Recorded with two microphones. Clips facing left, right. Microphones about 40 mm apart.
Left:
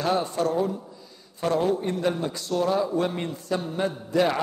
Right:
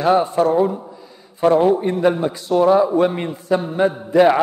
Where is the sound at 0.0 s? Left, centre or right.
Centre.